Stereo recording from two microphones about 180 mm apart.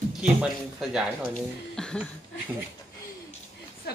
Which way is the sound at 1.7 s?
Centre (ahead or behind).